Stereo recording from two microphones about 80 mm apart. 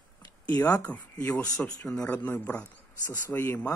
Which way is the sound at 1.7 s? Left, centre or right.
Left.